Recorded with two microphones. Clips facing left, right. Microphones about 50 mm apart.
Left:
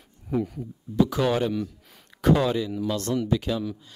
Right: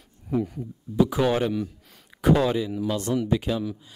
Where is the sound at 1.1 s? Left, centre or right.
Centre.